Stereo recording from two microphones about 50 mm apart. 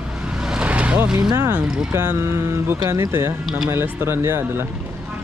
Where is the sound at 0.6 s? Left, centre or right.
Right.